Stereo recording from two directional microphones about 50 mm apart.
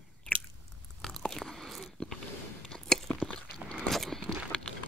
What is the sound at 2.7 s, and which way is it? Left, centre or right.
Biting, centre.